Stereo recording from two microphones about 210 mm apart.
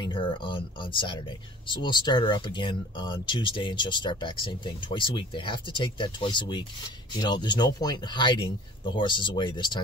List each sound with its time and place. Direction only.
0.0 s speech: 25° left (ahead or behind)